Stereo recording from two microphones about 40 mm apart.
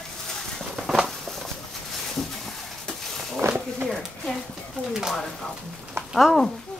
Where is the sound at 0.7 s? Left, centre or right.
Centre.